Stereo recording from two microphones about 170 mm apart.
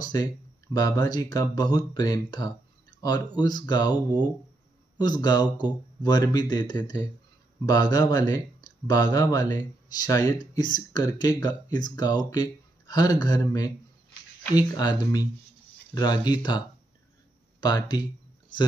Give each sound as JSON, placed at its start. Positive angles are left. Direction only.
{"t": 0.0, "sound": "speech", "side_deg": 25}